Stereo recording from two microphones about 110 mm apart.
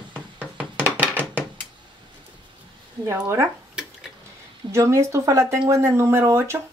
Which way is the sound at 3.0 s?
25° right (ahead or behind).